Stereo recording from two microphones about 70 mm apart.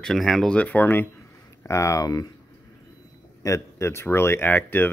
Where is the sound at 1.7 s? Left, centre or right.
Left.